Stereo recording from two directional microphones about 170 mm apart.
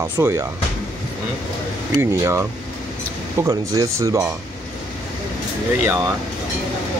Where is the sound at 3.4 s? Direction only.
20° right (ahead or behind).